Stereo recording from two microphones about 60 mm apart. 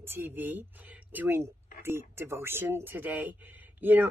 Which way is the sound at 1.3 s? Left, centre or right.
Right.